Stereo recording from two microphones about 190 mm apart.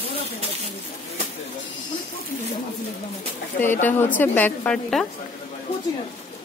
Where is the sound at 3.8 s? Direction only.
10° left (ahead or behind).